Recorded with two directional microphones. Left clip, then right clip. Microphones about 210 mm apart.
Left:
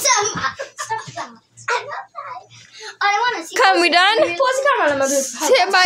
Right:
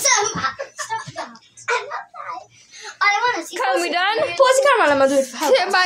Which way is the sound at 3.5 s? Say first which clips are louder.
Left 6 dB; 30° left (ahead or behind).